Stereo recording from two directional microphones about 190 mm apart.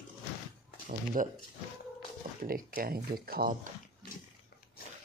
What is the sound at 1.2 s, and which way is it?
Speech, 45° right (ahead or behind).